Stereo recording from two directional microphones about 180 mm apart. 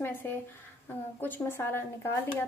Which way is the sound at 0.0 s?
10° left (ahead or behind).